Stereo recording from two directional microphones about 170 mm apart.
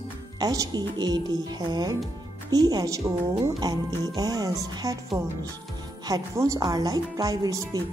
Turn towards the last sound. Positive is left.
turn(degrees=-20)  # may be behind; listen again after turning